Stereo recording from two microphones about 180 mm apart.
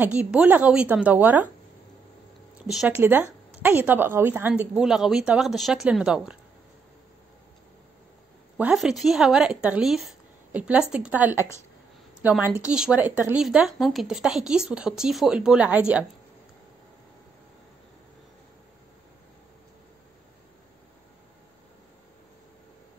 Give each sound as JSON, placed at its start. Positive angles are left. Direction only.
{"t": 0.0, "sound": "a woman's voice", "side_deg": -5}
{"t": 2.5, "sound": "a woman's voice", "side_deg": -5}
{"t": 8.5, "sound": "speech", "side_deg": -5}
{"t": 11.3, "sound": "a woman's voice", "side_deg": 15}
{"t": 12.2, "sound": "speech", "side_deg": -10}